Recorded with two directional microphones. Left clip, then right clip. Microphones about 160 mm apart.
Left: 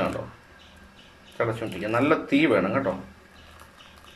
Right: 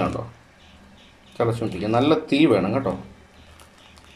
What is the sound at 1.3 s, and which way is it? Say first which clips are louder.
Speech: right 4 dB; 25° right (ahead or behind).